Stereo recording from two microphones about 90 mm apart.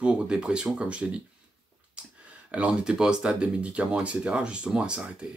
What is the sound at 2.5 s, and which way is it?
Speech, 10° right (ahead or behind).